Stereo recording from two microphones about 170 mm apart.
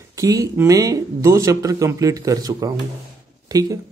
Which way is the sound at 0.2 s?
20° right (ahead or behind).